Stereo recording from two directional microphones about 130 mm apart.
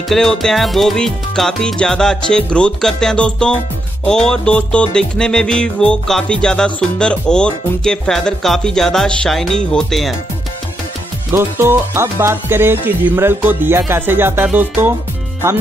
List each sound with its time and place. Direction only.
0.1 s music: 5° left (ahead or behind)
11.3 s music: 20° right (ahead or behind)